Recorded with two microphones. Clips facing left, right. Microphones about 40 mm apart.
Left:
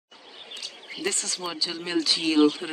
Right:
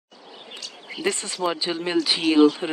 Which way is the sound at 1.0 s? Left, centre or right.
Right.